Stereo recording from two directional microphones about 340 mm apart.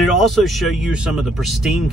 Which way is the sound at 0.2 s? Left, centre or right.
Centre.